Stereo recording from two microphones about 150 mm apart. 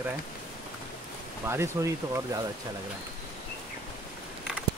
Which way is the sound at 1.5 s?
20° right (ahead or behind).